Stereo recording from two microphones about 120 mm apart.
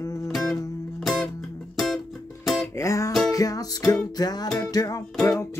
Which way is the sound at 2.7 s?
25° left (ahead or behind).